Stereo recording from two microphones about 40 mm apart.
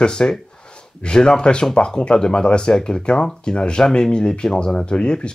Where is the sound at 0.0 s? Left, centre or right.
Centre.